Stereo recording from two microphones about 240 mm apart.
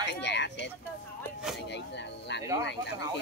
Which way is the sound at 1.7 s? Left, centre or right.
Left.